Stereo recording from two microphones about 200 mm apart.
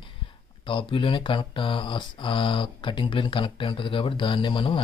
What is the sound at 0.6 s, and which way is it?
Speech, 25° left (ahead or behind).